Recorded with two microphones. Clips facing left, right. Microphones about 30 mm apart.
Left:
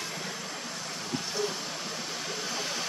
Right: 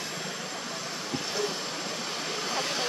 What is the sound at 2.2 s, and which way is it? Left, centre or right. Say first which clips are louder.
Vehicle: right 4 dB; right.